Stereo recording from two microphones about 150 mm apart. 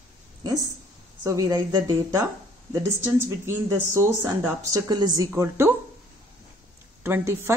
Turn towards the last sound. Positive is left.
turn(degrees=-20)  # may be behind; listen again after turning